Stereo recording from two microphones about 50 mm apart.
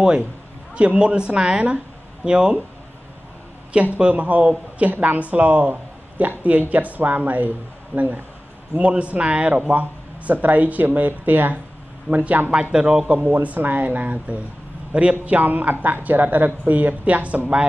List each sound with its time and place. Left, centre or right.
0.7 s a woman's voice: right
4.0 s a woman's voice: right